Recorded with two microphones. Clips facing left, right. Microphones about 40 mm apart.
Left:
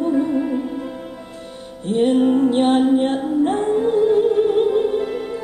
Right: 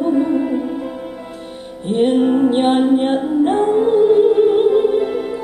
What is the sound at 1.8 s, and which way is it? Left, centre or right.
Music, right.